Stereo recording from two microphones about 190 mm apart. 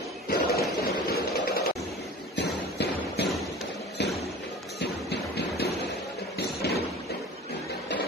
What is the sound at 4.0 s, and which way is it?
Thump, 65° left (ahead or behind).